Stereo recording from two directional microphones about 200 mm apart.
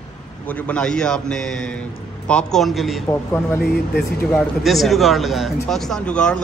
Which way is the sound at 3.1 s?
10° left (ahead or behind).